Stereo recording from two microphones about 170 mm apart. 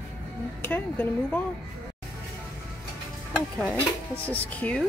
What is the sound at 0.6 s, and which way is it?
Speech, 10° left (ahead or behind).